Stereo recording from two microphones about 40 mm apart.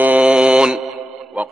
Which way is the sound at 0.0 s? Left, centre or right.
Right.